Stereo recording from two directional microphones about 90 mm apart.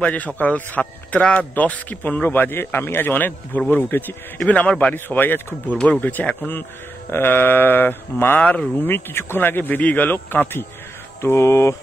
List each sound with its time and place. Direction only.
0.0 s a man's voice: 15° left (ahead or behind)